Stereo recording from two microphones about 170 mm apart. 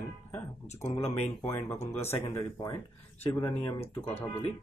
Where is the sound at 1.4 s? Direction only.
15° left (ahead or behind).